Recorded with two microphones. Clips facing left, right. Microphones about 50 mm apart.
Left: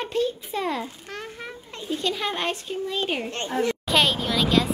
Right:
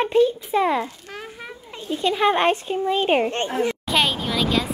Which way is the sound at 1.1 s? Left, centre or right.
Centre.